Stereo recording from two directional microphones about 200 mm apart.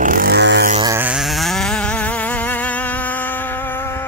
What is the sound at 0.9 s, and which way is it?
Vehicle, 5° right (ahead or behind).